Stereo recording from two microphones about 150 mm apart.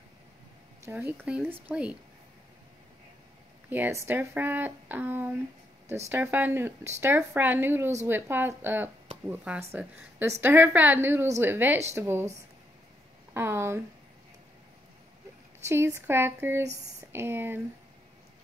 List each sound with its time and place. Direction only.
0.8 s speech: 15° right (ahead or behind)
3.7 s speech: 15° right (ahead or behind)
13.3 s speech: 15° right (ahead or behind)
15.6 s speech: 15° right (ahead or behind)